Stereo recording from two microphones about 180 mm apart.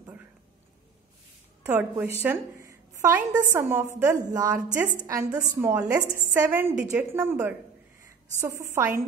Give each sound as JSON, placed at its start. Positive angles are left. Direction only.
{"t": 1.7, "sound": "a woman's voice", "side_deg": -10}